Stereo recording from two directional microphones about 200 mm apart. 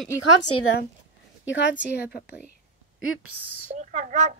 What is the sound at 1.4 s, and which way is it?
Speech, 65° left (ahead or behind).